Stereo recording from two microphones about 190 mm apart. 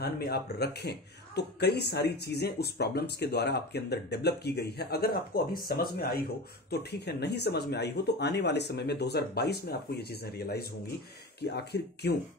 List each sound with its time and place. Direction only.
0.0 s speech: 55° left (ahead or behind)